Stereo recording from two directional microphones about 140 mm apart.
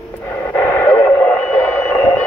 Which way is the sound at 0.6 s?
20° left (ahead or behind).